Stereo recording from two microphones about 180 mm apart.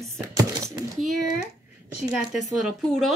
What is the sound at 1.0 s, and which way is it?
Speech, centre (ahead or behind).